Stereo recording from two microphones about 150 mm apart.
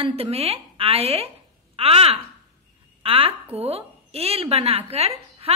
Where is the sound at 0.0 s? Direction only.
40° right (ahead or behind).